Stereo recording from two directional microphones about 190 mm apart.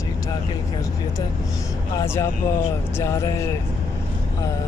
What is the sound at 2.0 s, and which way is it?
Speech, 15° left (ahead or behind).